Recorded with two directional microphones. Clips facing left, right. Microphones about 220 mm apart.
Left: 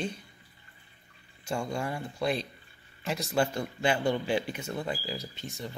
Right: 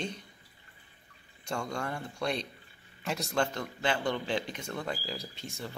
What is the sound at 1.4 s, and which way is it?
A man's voice, 5° left (ahead or behind).